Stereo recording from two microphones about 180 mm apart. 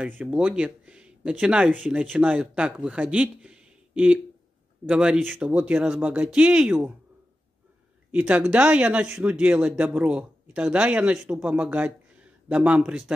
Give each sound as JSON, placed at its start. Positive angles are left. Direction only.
{"t": 0.2, "sound": "speech", "side_deg": -10}
{"t": 8.1, "sound": "speech", "side_deg": -10}